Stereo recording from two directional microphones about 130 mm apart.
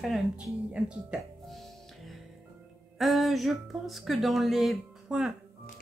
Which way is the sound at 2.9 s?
Centre (ahead or behind).